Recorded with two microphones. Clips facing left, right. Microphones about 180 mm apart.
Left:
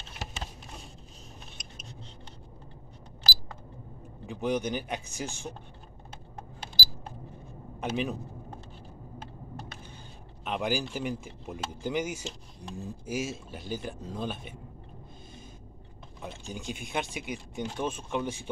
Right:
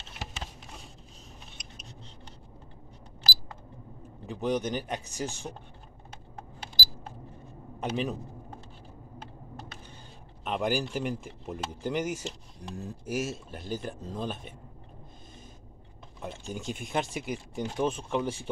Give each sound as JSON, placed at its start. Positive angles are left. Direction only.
{"t": 4.3, "sound": "speech", "side_deg": 0}
{"t": 5.0, "sound": "speech", "side_deg": -40}
{"t": 7.8, "sound": "speech", "side_deg": 0}
{"t": 10.4, "sound": "speech", "side_deg": 0}
{"t": 16.2, "sound": "speech", "side_deg": 0}